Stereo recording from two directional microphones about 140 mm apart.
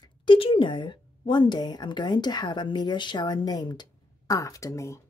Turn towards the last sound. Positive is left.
turn(degrees=20)  # may be behind; listen again after turning